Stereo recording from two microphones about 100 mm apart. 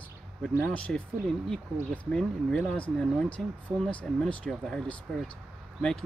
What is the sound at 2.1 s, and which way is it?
Speech, 10° left (ahead or behind).